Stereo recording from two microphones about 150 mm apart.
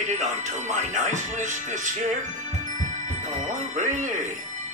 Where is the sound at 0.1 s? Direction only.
50° right (ahead or behind).